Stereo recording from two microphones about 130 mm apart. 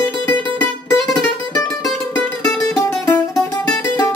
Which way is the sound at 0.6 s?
5° left (ahead or behind).